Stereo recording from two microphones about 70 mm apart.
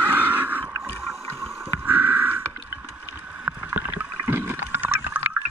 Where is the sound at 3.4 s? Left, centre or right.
Right.